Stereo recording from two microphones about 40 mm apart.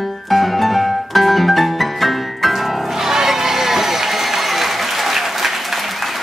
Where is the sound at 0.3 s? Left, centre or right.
Centre.